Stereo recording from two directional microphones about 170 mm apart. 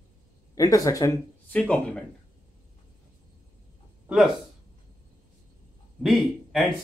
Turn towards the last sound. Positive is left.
turn(degrees=0)  # may be behind; listen again after turning